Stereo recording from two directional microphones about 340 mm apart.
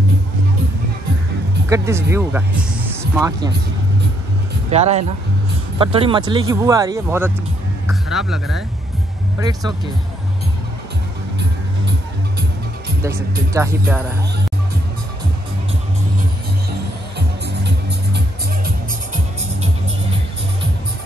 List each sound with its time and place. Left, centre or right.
1.7 s speech: centre
4.6 s speech: centre
7.8 s music: centre
13.0 s speech: centre